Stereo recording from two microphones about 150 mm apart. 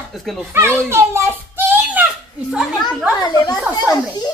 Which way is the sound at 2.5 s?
5° right (ahead or behind).